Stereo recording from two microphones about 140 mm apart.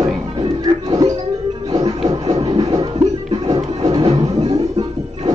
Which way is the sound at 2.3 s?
30° right (ahead or behind).